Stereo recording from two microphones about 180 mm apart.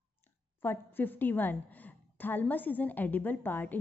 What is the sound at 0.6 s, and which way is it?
A woman's voice, 10° left (ahead or behind).